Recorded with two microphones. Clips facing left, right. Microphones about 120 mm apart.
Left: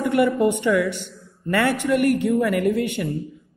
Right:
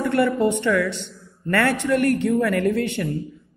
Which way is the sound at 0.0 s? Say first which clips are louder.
Left 1 dB; 15° left (ahead or behind).